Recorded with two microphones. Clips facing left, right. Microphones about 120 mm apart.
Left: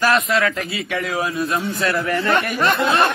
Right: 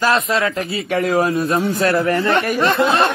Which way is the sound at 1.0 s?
45° right (ahead or behind).